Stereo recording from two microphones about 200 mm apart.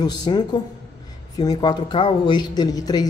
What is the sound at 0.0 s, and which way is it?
Speech, 20° left (ahead or behind).